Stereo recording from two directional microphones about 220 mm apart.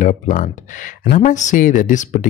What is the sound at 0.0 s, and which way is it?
Speech, 35° left (ahead or behind).